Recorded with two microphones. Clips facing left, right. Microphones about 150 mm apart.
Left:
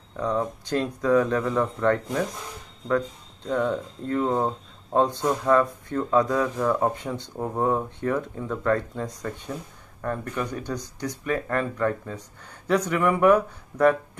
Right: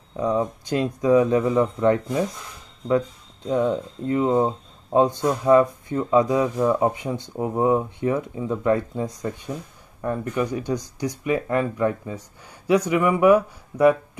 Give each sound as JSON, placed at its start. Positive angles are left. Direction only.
{"t": 0.1, "sound": "speech", "side_deg": -10}
{"t": 3.4, "sound": "speech", "side_deg": -15}